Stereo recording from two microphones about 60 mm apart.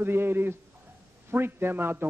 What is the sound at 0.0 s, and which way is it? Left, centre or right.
A man's voice, right.